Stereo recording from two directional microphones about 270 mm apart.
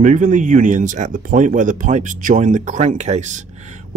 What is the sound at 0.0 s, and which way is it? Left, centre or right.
Speech, right.